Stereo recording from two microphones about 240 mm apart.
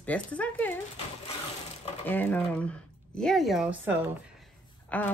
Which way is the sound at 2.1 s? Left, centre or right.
Centre.